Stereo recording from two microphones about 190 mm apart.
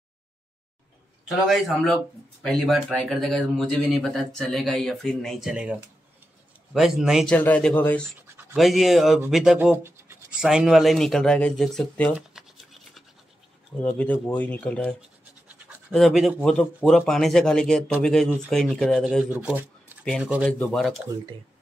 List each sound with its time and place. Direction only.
2.4 s speech: centre (ahead or behind)
7.3 s speech: 10° left (ahead or behind)
12.2 s toothbrush: centre (ahead or behind)
13.7 s speech: 5° left (ahead or behind)
19.3 s shuffling cards: 10° right (ahead or behind)
20.1 s speech: 5° right (ahead or behind)